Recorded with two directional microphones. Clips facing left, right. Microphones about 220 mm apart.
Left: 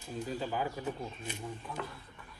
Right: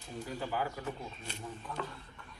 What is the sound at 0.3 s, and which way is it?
Speech, 15° left (ahead or behind).